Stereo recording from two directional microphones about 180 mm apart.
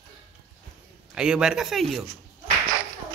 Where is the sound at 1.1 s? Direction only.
5° right (ahead or behind).